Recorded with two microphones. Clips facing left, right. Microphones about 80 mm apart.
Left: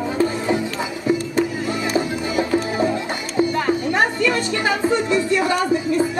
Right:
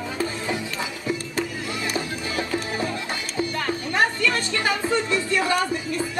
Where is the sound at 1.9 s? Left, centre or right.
Centre.